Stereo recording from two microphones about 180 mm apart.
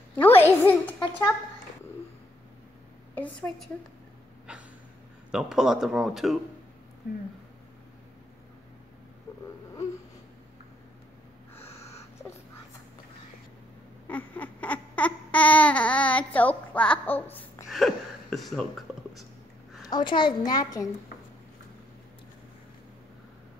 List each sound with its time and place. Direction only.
0.1 s a woman's voice: 10° left (ahead or behind)
3.2 s speech: 5° left (ahead or behind)
4.5 s a sound: 5° right (ahead or behind)
5.3 s speech: 5° right (ahead or behind)
14.0 s babbling: 10° left (ahead or behind)
17.6 s a sound: centre (ahead or behind)
19.9 s a child's voice: 25° left (ahead or behind)